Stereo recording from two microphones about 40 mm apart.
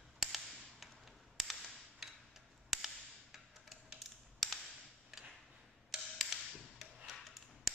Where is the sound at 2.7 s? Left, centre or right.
Centre.